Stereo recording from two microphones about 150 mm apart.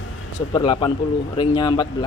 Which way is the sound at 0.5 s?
30° left (ahead or behind).